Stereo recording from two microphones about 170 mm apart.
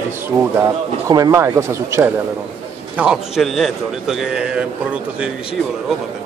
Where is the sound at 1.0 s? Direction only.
20° right (ahead or behind).